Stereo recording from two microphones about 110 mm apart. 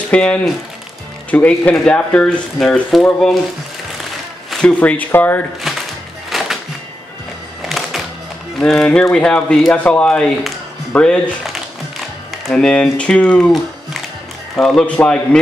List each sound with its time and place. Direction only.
0.1 s speech: 10° left (ahead or behind)
4.5 s speech: 10° left (ahead or behind)
6.3 s music: centre (ahead or behind)
7.6 s music: centre (ahead or behind)
8.5 s speech: 5° left (ahead or behind)
12.4 s speech: 5° left (ahead or behind)